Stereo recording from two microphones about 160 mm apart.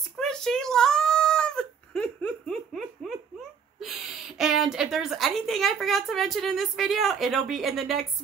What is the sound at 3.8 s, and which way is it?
A woman's voice, centre (ahead or behind).